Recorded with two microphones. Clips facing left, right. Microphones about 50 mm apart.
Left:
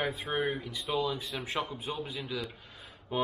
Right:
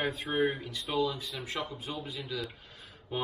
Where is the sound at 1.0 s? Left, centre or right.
Left.